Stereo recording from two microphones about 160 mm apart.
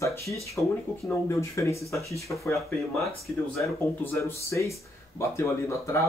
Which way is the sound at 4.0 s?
15° left (ahead or behind).